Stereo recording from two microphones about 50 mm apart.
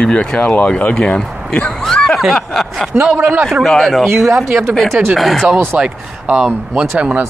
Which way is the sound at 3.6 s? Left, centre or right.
Centre.